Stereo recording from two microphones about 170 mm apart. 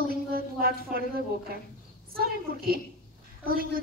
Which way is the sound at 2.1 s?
60° right (ahead or behind).